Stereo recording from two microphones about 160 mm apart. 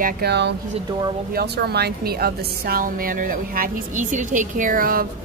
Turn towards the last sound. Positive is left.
turn(degrees=-60)  # may be behind; listen again after turning